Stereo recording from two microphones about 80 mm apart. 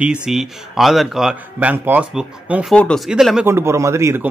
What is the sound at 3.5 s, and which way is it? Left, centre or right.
Speech, right.